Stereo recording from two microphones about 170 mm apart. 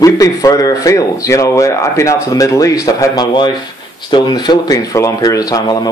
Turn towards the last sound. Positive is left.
turn(degrees=20)  # may be behind; listen again after turning